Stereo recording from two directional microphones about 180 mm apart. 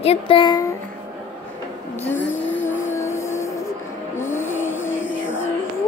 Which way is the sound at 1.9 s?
10° left (ahead or behind).